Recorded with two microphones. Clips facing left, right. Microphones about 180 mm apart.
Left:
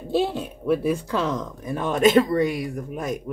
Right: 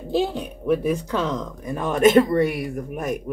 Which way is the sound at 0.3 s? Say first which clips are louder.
Right 1 dB; 15° right (ahead or behind).